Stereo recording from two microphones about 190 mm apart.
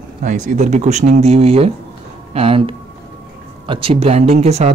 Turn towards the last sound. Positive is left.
turn(degrees=-35)  # may be behind; listen again after turning